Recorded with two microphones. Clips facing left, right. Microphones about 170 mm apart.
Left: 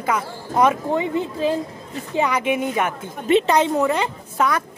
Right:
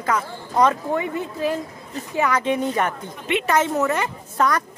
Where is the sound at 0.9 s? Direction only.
20° left (ahead or behind).